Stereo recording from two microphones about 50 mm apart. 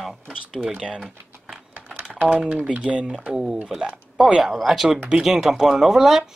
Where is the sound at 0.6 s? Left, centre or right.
Centre.